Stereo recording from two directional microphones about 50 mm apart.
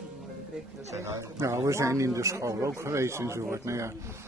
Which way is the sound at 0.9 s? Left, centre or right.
Right.